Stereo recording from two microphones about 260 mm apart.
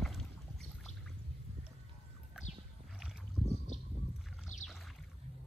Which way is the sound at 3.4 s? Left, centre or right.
Centre.